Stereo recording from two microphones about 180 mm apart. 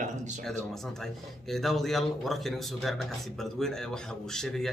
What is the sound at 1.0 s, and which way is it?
A man's voice, centre (ahead or behind).